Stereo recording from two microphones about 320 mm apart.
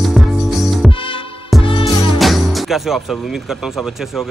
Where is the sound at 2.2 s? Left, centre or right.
Centre.